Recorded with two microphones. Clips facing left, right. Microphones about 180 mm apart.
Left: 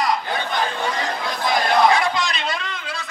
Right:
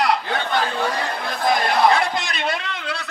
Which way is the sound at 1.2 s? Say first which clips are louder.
Right 1 dB; 55° right (ahead or behind).